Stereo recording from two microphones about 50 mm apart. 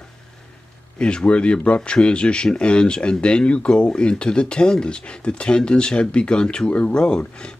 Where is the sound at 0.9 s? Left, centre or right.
Centre.